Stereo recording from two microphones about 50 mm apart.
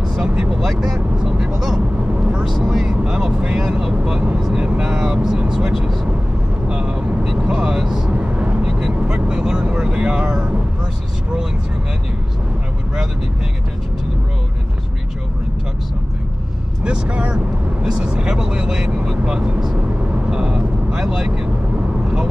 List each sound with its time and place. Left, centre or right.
0.3 s speech: centre
2.4 s vehicle: centre
8.1 s vehicle: right
8.6 s vehicle: centre
9.7 s speech: centre
16.8 s speech: centre
20.2 s vehicle: centre